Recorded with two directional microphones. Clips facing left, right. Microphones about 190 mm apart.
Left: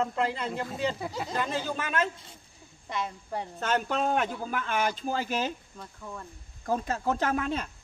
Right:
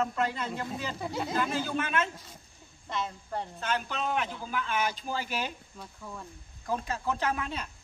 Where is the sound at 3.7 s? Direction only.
45° left (ahead or behind).